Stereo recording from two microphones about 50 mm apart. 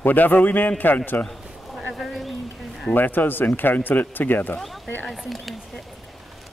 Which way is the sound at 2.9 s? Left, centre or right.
Left.